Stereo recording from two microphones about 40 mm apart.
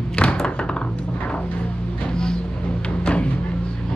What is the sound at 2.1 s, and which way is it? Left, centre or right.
Vehicle, centre.